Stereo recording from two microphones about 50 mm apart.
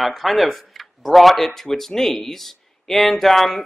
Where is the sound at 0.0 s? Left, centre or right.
Centre.